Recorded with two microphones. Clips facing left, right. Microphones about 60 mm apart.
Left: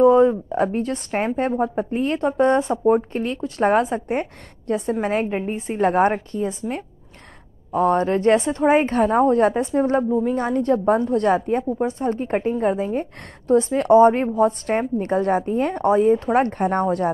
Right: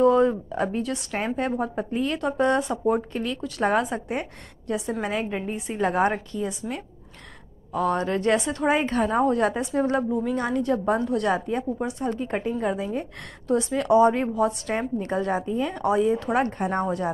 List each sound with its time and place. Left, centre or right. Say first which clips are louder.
0.0 s a woman's voice: left 5 dB; left
7.7 s a woman's voice: left 6 dB; left
15.7 s a woman's voice: left 6 dB; left